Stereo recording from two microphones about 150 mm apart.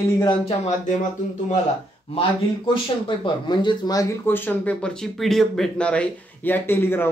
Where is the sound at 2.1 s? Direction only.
35° left (ahead or behind).